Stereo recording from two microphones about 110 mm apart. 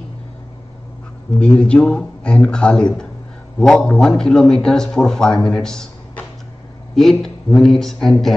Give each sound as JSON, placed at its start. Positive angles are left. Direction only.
{"t": 1.4, "sound": "a man's voice", "side_deg": 10}